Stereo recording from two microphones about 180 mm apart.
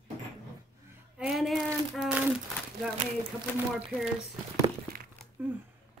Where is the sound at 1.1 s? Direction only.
5° right (ahead or behind).